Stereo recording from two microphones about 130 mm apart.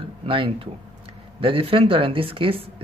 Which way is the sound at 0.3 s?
40° right (ahead or behind).